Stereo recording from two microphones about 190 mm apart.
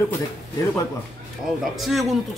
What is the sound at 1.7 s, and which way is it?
Speech, centre (ahead or behind).